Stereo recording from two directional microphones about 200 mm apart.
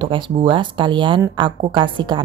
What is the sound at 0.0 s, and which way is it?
Speech, 25° right (ahead or behind).